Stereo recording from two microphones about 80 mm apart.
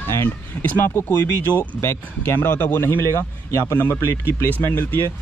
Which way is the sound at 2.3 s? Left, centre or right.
Left.